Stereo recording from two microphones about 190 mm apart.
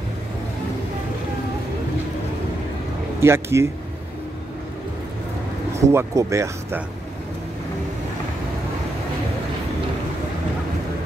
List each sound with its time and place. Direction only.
3.2 s speech: 15° right (ahead or behind)
5.8 s speech: 15° right (ahead or behind)